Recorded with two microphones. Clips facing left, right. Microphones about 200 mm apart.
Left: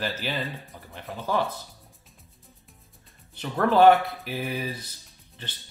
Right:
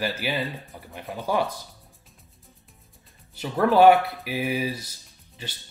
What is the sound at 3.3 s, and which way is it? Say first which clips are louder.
Speech: right 2 dB; 10° right (ahead or behind).